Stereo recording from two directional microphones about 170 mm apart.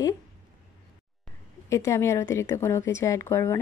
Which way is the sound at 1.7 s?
15° left (ahead or behind).